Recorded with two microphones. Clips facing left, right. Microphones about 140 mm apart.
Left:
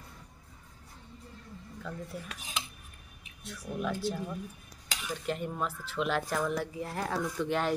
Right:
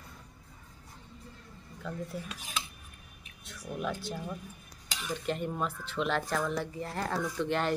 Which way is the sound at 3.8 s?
5° left (ahead or behind).